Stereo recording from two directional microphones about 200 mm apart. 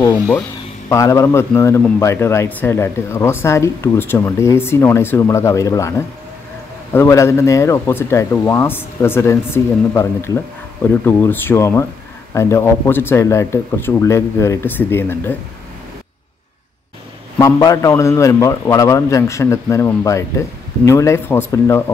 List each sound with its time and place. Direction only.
0.0 s a man's voice: 15° left (ahead or behind)
17.4 s a man's voice: 15° left (ahead or behind)